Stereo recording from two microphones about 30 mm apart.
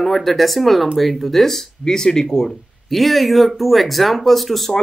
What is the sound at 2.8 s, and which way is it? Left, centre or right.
Speech, centre.